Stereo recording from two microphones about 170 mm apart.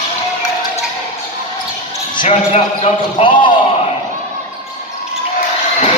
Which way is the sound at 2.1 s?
40° left (ahead or behind).